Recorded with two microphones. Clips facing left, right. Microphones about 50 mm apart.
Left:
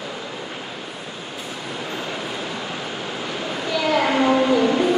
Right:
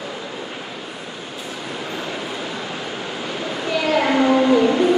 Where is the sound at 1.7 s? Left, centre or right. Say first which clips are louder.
Right 1 dB; centre.